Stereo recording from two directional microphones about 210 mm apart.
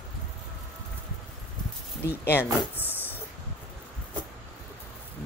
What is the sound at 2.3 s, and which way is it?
Speech, 10° left (ahead or behind).